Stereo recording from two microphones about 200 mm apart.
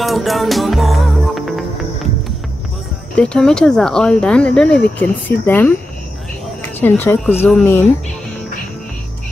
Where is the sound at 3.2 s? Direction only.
5° left (ahead or behind).